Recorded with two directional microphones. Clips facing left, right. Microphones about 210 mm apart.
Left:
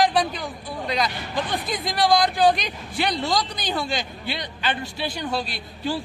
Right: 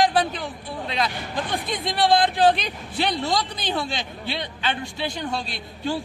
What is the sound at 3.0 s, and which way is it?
Speech, centre (ahead or behind).